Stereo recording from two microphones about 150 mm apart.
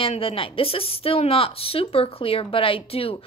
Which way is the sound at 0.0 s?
40° left (ahead or behind).